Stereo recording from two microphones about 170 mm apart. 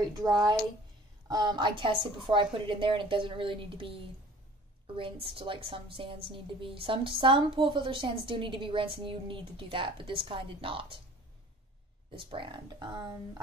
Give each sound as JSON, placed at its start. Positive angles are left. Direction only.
{"t": 0.0, "sound": "a woman's voice", "side_deg": -25}
{"t": 5.2, "sound": "a woman's voice", "side_deg": -30}
{"t": 12.2, "sound": "a woman's voice", "side_deg": -30}